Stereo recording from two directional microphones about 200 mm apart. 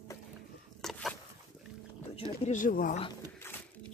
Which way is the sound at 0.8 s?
Centre (ahead or behind).